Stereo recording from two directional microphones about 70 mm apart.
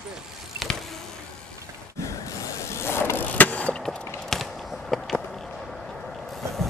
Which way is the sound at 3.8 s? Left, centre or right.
Centre.